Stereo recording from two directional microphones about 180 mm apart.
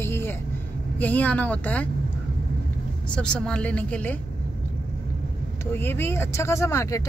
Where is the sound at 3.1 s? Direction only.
5° left (ahead or behind).